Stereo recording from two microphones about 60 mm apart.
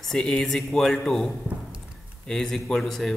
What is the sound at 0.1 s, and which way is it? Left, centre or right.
Speech, centre.